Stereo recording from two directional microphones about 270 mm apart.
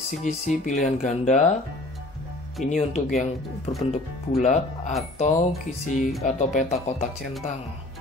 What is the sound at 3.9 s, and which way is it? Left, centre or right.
Speech, left.